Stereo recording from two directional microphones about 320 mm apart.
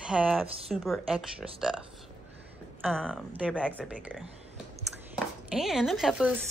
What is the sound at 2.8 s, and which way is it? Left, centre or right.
Speech, centre.